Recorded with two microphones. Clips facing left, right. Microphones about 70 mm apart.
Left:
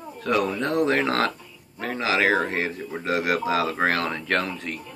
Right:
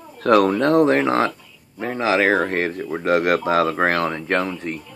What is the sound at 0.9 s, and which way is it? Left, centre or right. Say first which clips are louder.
Speech: right 4 dB; right.